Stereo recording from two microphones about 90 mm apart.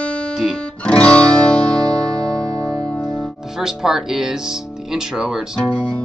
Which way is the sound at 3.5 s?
5° right (ahead or behind).